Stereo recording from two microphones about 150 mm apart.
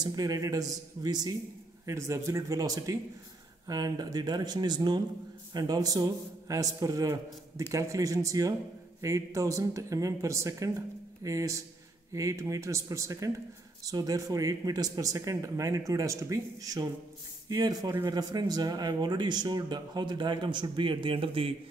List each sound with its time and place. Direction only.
0.0 s speech: 25° right (ahead or behind)